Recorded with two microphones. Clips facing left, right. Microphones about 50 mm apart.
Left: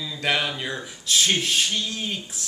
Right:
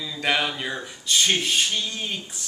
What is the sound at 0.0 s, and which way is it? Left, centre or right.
Mantra, centre.